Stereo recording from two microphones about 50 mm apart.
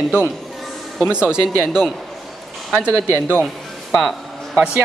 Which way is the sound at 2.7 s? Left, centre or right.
Right.